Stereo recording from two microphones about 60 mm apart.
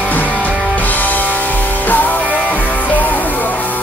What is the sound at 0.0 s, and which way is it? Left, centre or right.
Music, left.